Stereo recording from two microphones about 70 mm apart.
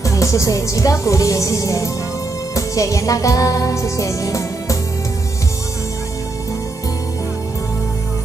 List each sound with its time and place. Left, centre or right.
0.0 s music: left